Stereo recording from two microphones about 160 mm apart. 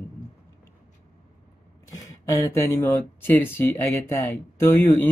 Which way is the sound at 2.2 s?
20° left (ahead or behind).